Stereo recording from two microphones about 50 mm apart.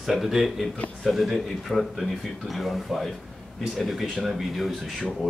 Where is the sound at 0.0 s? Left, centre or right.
Centre.